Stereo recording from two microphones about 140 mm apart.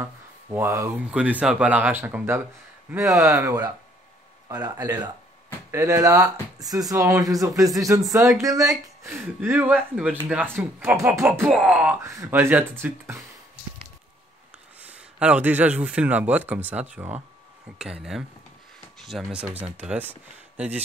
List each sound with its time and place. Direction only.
0.0 s a sound: 15° right (ahead or behind)
1.1 s speech: 10° right (ahead or behind)
14.8 s speech: 10° right (ahead or behind)